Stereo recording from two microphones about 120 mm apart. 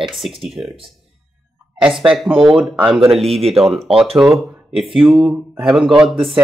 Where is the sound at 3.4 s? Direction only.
55° right (ahead or behind).